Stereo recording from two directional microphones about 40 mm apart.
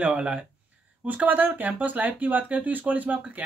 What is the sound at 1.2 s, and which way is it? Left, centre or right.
Speech, right.